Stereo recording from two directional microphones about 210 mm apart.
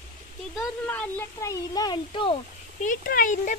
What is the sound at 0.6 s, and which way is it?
Speech, 10° left (ahead or behind).